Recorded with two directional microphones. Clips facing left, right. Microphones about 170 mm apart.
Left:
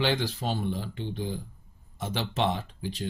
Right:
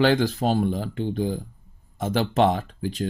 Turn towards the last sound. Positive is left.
turn(degrees=-50)  # may be behind; listen again after turning